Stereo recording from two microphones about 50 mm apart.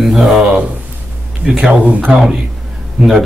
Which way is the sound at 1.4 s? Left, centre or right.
Right.